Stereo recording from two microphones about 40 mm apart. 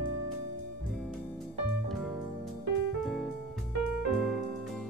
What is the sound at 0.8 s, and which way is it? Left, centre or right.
Music, centre.